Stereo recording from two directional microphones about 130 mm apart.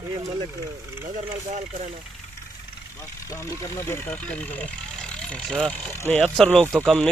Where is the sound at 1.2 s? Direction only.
75° right (ahead or behind).